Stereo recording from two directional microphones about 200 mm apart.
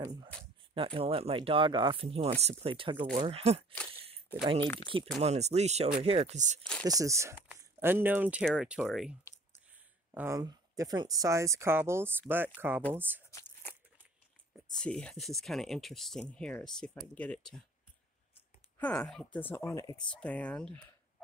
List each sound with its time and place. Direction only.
0.7 s speech: 25° right (ahead or behind)
3.9 s a sound: 30° right (ahead or behind)
5.2 s speech: 35° right (ahead or behind)
6.8 s a woman's voice: 15° right (ahead or behind); by 9.1 s centre (ahead or behind)
10.1 s a woman's voice: 15° right (ahead or behind)
13.3 s a sound: 10° left (ahead or behind)
14.7 s speech: 5° left (ahead or behind)
18.8 s speech: 5° left (ahead or behind)
20.2 s speech: 5° left (ahead or behind)